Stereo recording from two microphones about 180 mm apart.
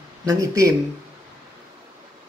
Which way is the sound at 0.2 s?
20° right (ahead or behind).